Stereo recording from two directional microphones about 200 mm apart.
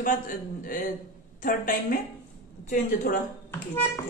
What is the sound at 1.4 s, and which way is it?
Speech, 45° left (ahead or behind).